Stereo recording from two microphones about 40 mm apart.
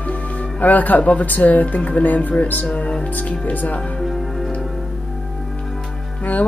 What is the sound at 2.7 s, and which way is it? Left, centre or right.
Speech, left.